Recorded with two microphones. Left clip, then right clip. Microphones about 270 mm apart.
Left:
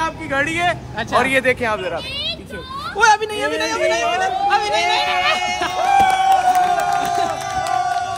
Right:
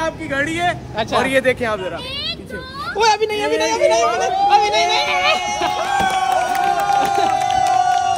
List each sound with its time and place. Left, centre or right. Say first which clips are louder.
0.0 s speech: left 1 dB; centre
3.0 s speech: left 1 dB; centre